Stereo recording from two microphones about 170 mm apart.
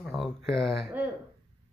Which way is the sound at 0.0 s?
Centre (ahead or behind).